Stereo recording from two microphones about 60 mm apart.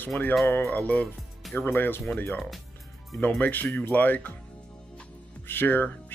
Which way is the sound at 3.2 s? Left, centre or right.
Left.